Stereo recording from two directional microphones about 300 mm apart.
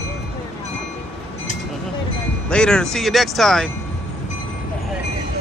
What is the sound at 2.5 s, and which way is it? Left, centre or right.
Speech, centre.